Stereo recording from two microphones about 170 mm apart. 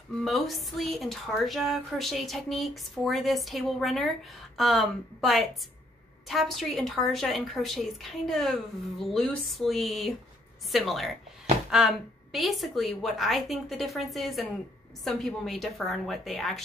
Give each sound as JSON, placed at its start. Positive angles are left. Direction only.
{"t": 0.2, "sound": "a woman's voice", "side_deg": 0}